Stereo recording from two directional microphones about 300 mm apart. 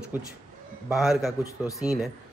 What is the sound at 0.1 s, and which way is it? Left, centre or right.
Speech, centre.